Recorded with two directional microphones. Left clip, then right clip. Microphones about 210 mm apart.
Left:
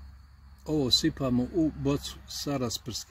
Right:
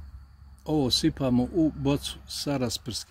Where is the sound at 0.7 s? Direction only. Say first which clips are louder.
Right 1 dB; 25° right (ahead or behind).